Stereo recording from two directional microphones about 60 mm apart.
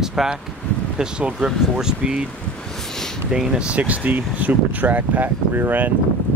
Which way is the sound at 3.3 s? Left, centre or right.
Centre.